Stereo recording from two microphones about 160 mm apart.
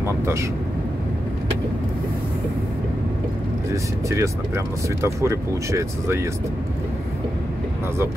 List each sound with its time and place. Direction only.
0.0 s speech: 15° right (ahead or behind)
4.1 s speech: 15° right (ahead or behind)